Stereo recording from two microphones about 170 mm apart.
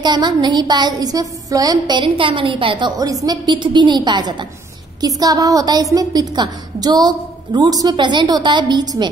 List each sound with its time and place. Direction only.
0.0 s a woman's voice: 25° right (ahead or behind)